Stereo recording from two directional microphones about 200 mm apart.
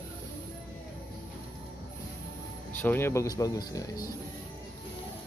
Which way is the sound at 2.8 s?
10° left (ahead or behind).